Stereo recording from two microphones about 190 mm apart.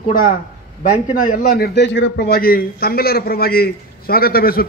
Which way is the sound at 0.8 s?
50° left (ahead or behind).